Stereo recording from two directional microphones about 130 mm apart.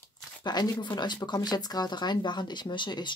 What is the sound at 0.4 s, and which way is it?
Speech, 30° left (ahead or behind).